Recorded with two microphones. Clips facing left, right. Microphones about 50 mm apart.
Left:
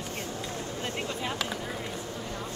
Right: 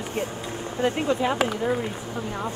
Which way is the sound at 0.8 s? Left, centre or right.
Right.